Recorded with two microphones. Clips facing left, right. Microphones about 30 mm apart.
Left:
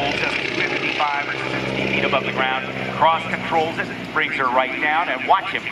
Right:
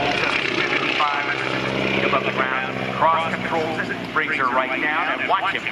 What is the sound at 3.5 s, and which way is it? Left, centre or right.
Speech, centre.